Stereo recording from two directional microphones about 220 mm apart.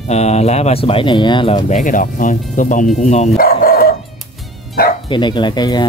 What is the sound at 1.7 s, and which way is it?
Speech, 35° left (ahead or behind).